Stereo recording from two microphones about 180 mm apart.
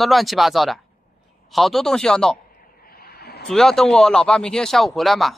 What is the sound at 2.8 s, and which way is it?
Vehicle, 60° left (ahead or behind).